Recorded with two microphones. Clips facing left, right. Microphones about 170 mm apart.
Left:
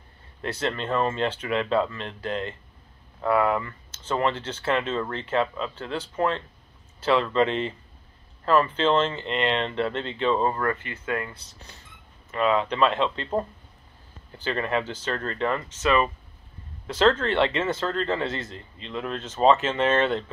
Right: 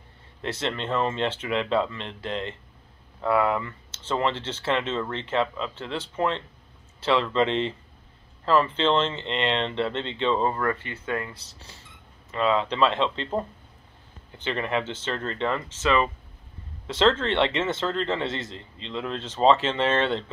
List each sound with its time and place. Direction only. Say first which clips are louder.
0.4 s speech: left 1 dB; 25° right (ahead or behind)
14.3 s speech: left 1 dB; 20° right (ahead or behind)
16.8 s speech: left 1 dB; 25° right (ahead or behind)